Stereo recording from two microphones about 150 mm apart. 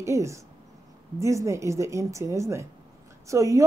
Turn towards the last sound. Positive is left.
turn(degrees=-20)  # may be behind; listen again after turning